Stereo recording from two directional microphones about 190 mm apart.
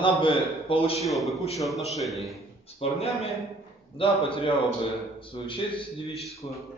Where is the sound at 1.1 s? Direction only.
Centre (ahead or behind).